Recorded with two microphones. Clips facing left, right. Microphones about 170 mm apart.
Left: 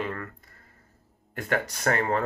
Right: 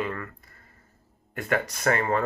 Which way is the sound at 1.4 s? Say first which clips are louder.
Right 1 dB; 40° left (ahead or behind).